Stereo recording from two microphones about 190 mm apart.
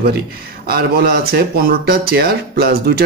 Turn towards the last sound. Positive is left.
turn(degrees=-55)  # may be behind; listen again after turning